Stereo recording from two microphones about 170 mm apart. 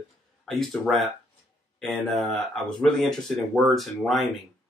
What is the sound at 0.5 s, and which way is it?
Speech, centre (ahead or behind).